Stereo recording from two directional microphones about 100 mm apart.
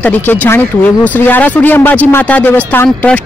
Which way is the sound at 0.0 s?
15° left (ahead or behind).